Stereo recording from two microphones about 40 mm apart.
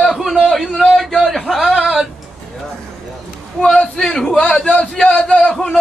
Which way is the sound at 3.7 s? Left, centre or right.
Centre.